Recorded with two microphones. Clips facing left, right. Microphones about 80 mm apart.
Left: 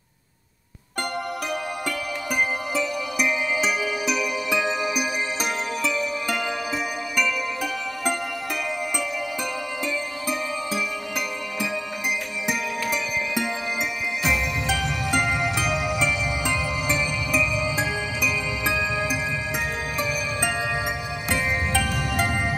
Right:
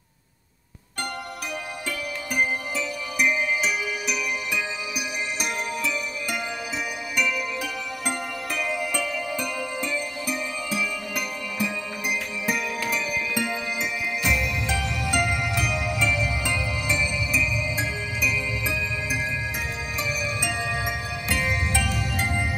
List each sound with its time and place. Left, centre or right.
4.5 s music: left
5.8 s music: left
10.2 s music: left
14.2 s music: left
17.3 s music: left
20.0 s music: left
20.4 s music: left
21.8 s music: left
22.2 s music: left